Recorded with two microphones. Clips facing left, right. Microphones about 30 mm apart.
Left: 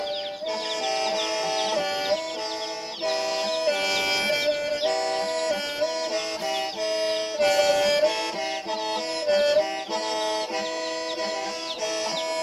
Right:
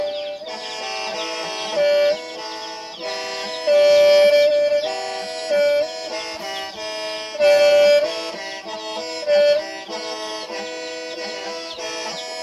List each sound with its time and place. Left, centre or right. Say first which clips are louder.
1.1 s music: left 1 dB; centre
3.6 s music: right 15 dB; centre
9.2 s music: right 6 dB; centre